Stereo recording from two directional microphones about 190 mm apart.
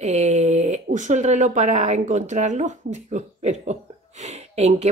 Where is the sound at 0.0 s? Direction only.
35° right (ahead or behind).